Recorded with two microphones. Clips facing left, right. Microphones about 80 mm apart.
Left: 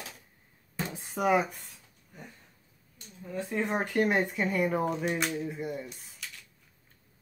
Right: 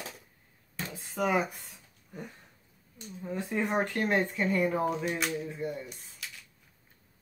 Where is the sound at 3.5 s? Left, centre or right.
Centre.